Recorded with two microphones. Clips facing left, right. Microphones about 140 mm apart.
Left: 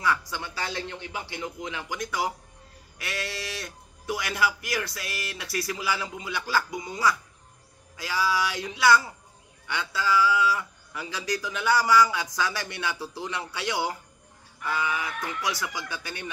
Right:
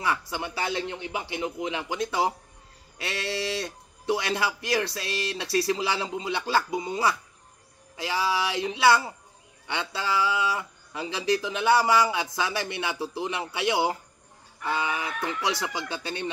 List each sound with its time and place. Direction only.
0.3 s speech: 20° right (ahead or behind)